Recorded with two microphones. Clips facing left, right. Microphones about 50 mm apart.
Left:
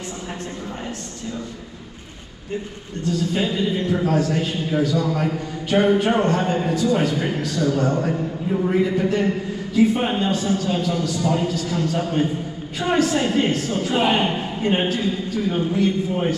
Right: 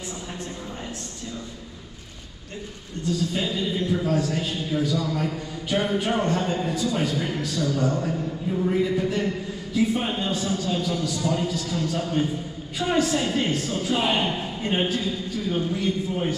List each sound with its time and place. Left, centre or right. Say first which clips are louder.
3.3 s a man's voice: left 4 dB; left